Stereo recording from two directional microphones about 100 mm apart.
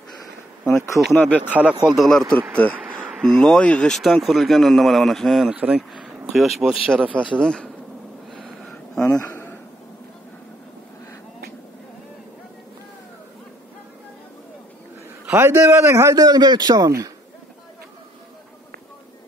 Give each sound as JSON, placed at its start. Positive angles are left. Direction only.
{"t": 0.7, "sound": "speech", "side_deg": 30}
{"t": 1.1, "sound": "speech", "side_deg": 15}
{"t": 1.5, "sound": "speech", "side_deg": -15}
{"t": 2.0, "sound": "speech", "side_deg": 5}
{"t": 2.7, "sound": "insect", "side_deg": -10}
{"t": 3.3, "sound": "speech", "side_deg": 5}
{"t": 5.5, "sound": "speech", "side_deg": -10}
{"t": 7.0, "sound": "speech", "side_deg": -15}
{"t": 7.3, "sound": "speech", "side_deg": 5}
{"t": 8.3, "sound": "a sound", "side_deg": 0}
{"t": 9.2, "sound": "a sound", "side_deg": 20}
{"t": 15.2, "sound": "a man's voice", "side_deg": -25}
{"t": 16.2, "sound": "a man's voice", "side_deg": -40}